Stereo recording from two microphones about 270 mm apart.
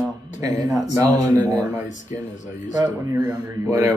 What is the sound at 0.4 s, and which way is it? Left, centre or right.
Speech, centre.